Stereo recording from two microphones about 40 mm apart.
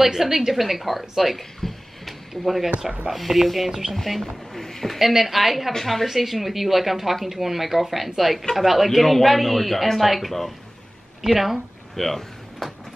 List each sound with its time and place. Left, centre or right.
0.0 s speech: centre
1.6 s a sound: centre
3.1 s speech: centre
4.9 s speech: centre
5.7 s a woman's voice: centre
6.0 s speech: centre
11.9 s door: centre